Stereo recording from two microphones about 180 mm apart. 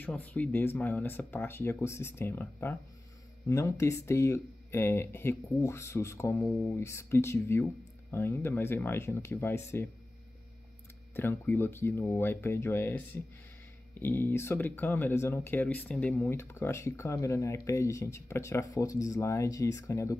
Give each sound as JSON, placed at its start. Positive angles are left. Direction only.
{"t": 0.0, "sound": "speech", "side_deg": 10}
{"t": 11.1, "sound": "speech", "side_deg": 10}